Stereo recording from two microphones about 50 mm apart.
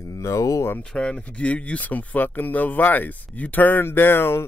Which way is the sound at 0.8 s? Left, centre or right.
Left.